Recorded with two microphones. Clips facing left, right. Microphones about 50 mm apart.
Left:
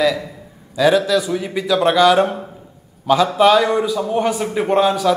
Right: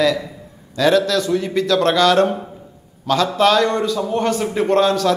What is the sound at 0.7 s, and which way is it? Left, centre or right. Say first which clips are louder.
A man's voice: left 1 dB; centre.